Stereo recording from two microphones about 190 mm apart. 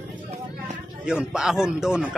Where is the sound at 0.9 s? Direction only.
5° right (ahead or behind).